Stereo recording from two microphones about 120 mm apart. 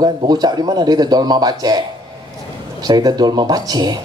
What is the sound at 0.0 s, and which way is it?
Speech, 35° right (ahead or behind).